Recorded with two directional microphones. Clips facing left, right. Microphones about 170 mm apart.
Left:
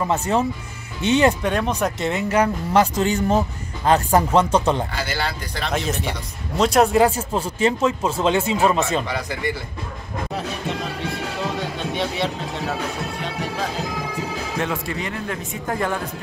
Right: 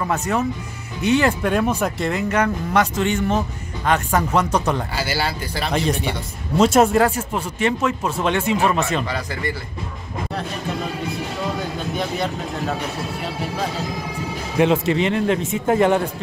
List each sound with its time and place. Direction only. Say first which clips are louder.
0.1 s speech: even; 30° left (ahead or behind)
1.4 s speech: right 2 dB; 5° right (ahead or behind)
2.7 s speech: left 2 dB; 35° left (ahead or behind)
4.9 s speech: right 2 dB; 5° right (ahead or behind)
7.0 s speech: left 1 dB; 20° left (ahead or behind)
11.6 s speech: even; centre (ahead or behind)
14.6 s a man's voice: right 11 dB; 25° right (ahead or behind)